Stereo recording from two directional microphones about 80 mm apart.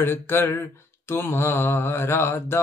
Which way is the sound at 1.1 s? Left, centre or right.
Left.